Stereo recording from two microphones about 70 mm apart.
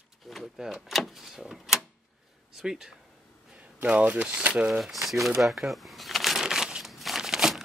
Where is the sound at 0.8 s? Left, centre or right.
Centre.